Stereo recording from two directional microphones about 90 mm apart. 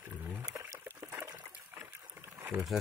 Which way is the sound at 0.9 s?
20° right (ahead or behind).